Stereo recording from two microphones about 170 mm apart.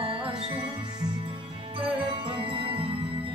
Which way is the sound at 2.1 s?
30° right (ahead or behind).